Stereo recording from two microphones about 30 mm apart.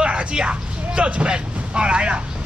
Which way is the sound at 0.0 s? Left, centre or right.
Right.